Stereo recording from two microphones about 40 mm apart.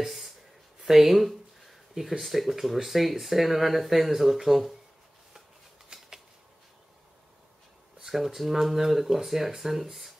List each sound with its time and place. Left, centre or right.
0.0 s a sound: centre
0.7 s speech: centre
5.9 s shuffling cards: right
8.4 s speech: centre